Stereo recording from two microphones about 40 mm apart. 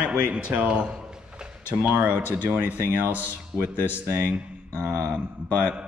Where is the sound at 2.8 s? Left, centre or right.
Right.